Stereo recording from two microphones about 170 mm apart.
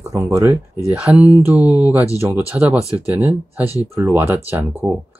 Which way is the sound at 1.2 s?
10° right (ahead or behind).